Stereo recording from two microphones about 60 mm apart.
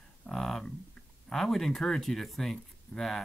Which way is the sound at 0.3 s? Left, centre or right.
Centre.